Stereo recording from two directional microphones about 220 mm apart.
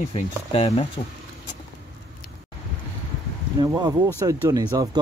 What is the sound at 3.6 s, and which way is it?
Speech, 20° right (ahead or behind).